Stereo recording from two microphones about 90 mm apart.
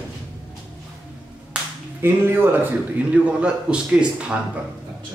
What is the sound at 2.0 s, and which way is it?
A man's voice, 25° right (ahead or behind).